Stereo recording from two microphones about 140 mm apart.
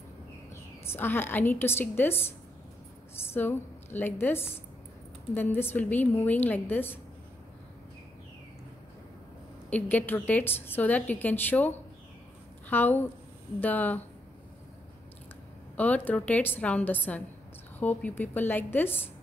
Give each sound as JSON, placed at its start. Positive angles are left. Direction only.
{"t": 0.5, "sound": "a woman's voice", "side_deg": 15}
{"t": 3.3, "sound": "a woman's voice", "side_deg": 15}
{"t": 9.7, "sound": "a woman's voice", "side_deg": 10}
{"t": 15.7, "sound": "a woman's voice", "side_deg": 10}